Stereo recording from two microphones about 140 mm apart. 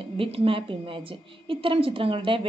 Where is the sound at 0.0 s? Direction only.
40° right (ahead or behind).